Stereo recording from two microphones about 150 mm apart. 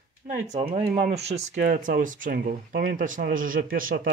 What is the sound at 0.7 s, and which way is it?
Speech, 45° right (ahead or behind).